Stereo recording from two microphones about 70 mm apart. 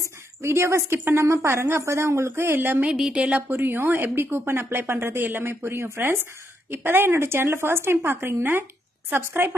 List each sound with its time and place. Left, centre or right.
0.0 s a woman's voice: right
2.9 s a woman's voice: centre
3.4 s a woman's voice: right